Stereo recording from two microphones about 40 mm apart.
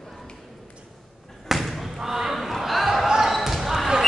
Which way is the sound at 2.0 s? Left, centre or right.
Centre.